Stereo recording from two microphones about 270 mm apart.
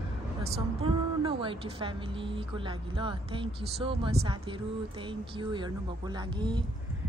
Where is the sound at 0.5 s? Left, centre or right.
Right.